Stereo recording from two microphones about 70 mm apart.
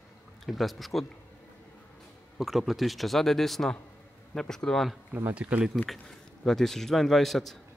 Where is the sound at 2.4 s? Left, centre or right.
Centre.